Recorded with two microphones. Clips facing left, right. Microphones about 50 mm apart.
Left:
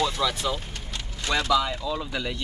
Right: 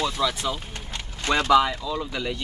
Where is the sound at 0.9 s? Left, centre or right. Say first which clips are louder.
Right 3 dB; right.